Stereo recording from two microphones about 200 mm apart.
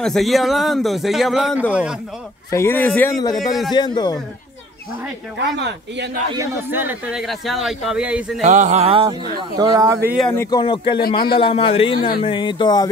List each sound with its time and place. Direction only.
0.0 s speech: centre (ahead or behind)
2.5 s speech: 10° left (ahead or behind)
3.7 s a man's voice: 20° left (ahead or behind)
5.4 s speech: 60° right (ahead or behind)
6.3 s speech: 15° right (ahead or behind)
8.4 s a sound: 35° right (ahead or behind)
9.4 s speech: 20° right (ahead or behind)
10.1 s speech: 10° left (ahead or behind)
10.6 s a man's voice: 25° left (ahead or behind)
11.0 s speech: 50° left (ahead or behind)
11.3 s a man's voice: 25° left (ahead or behind)